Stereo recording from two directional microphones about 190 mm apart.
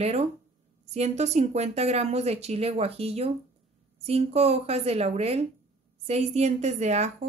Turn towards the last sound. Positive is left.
turn(degrees=-35)  # may be behind; listen again after turning